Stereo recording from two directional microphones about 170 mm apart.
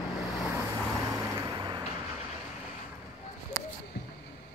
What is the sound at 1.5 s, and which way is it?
Vehicle, 25° right (ahead or behind).